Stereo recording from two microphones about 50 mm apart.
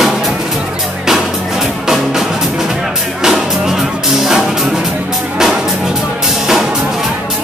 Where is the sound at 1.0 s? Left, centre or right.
Centre.